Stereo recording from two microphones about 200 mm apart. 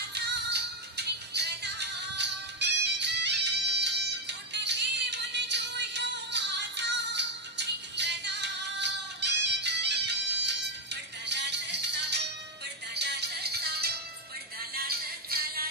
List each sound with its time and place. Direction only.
0.1 s music: 55° right (ahead or behind)